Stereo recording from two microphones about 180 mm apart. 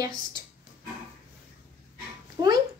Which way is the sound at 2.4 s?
25° right (ahead or behind).